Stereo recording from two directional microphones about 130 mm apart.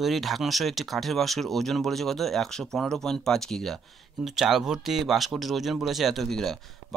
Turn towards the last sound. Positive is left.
turn(degrees=0)  # may be behind; listen again after turning